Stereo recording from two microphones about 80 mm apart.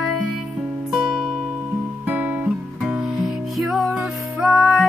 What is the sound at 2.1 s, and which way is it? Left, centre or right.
Music, centre.